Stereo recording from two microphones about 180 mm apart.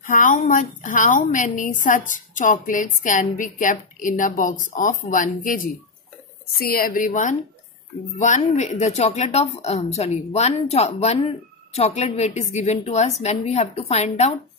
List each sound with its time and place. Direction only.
0.0 s a woman's voice: 45° left (ahead or behind)